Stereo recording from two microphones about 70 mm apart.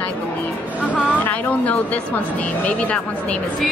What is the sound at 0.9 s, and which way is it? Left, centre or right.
Speech, left.